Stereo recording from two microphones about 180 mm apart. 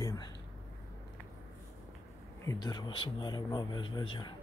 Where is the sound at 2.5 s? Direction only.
25° left (ahead or behind).